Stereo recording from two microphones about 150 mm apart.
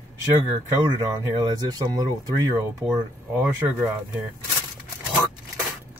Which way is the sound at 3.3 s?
15° right (ahead or behind).